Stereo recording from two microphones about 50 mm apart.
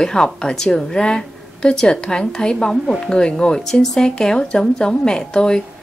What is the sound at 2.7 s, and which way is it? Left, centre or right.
Speech, centre.